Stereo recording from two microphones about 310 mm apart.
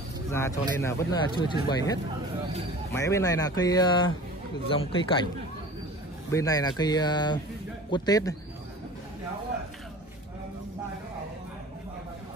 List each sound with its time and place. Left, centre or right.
0.3 s speech: centre
6.3 s speech: centre